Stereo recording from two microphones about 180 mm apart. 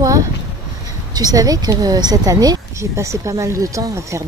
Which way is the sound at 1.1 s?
20° right (ahead or behind).